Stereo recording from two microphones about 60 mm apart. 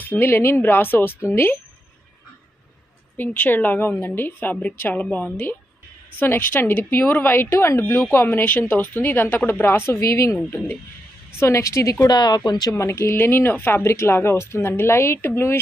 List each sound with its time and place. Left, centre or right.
0.0 s speech: left
3.2 s a woman's voice: left
12.7 s speech: left
13.8 s speech: left